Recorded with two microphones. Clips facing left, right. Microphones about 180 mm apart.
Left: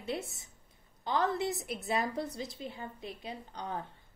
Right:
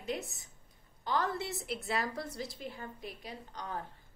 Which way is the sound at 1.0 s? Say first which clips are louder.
Left 3 dB; 20° left (ahead or behind).